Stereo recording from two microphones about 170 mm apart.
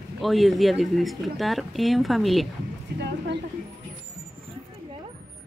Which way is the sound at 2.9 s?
90° right.